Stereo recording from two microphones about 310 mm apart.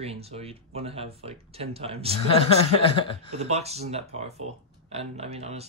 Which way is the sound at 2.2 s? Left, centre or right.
Centre.